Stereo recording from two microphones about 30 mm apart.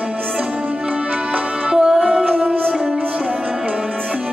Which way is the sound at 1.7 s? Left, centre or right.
Right.